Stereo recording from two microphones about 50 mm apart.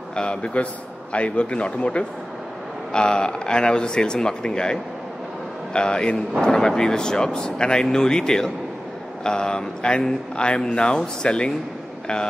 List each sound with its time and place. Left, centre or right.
0.1 s speech: centre